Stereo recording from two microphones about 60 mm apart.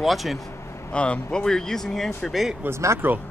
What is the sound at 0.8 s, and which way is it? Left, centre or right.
Speech, left.